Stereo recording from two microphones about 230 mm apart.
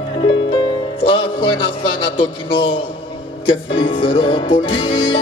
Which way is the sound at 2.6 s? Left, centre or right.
Left.